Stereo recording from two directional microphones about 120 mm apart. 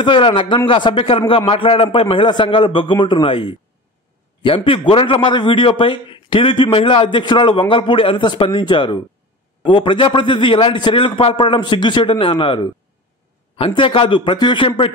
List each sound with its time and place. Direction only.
0.0 s a man's voice: 45° left (ahead or behind)